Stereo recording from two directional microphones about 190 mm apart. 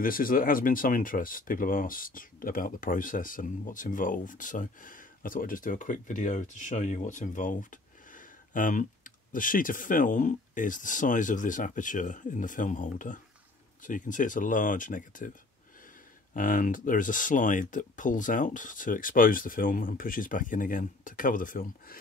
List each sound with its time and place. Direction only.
0.0 s speech: 50° left (ahead or behind)
16.3 s speech: 45° left (ahead or behind)